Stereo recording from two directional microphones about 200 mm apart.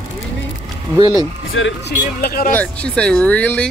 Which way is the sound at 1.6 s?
75° left (ahead or behind).